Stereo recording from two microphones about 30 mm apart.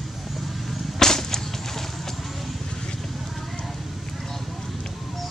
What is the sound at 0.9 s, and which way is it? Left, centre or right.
Whip, centre.